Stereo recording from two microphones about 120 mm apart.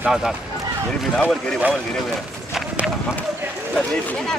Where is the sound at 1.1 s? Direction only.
5° left (ahead or behind).